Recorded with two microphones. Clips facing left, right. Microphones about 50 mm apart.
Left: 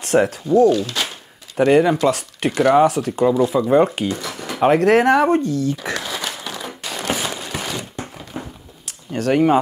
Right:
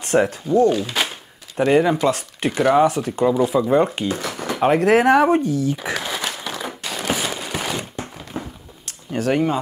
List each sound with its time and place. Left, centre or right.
0.0 s speech: centre
0.7 s speech: centre
1.6 s speech: centre
4.1 s a sound: right
4.6 s speech: centre
6.8 s a sound: centre